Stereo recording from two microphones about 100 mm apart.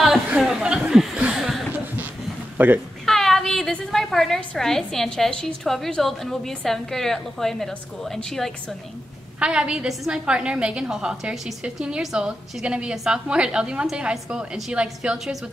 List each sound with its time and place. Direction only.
0.4 s chuckle: 5° right (ahead or behind)
2.5 s a man's voice: 20° right (ahead or behind)
3.1 s a woman's voice: 5° left (ahead or behind)
9.4 s a woman's voice: 10° right (ahead or behind)